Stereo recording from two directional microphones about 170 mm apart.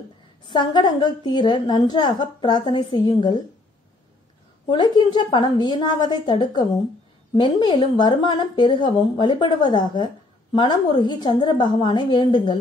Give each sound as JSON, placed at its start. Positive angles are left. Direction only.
{"t": 0.5, "sound": "a woman's voice", "side_deg": 25}
{"t": 4.6, "sound": "a woman's voice", "side_deg": 25}